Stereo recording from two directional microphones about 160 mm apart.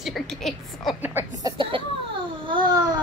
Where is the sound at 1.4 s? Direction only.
30° right (ahead or behind).